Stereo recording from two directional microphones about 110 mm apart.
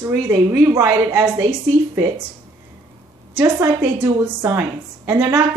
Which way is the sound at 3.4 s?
25° right (ahead or behind).